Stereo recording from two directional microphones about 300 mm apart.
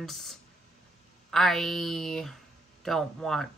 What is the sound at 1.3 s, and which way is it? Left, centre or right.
Speech, centre.